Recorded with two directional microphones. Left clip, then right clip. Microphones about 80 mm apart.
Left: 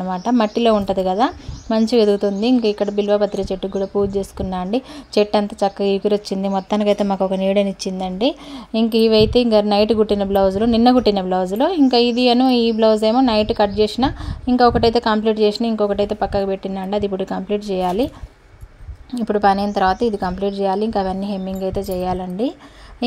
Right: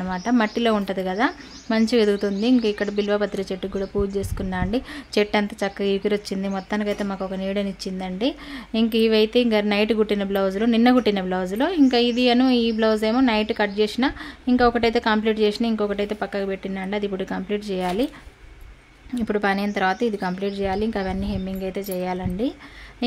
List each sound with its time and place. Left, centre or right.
0.1 s a woman's voice: left
3.7 s speech: centre
4.1 s a woman's voice: left
6.7 s speech: left
7.2 s speech: left
8.7 s a woman's voice: left
19.4 s a woman's voice: left